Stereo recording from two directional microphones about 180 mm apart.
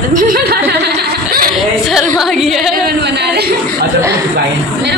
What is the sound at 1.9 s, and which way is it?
Singing, centre (ahead or behind).